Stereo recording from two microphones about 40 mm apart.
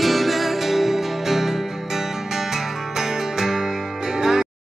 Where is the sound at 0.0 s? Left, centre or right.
Centre.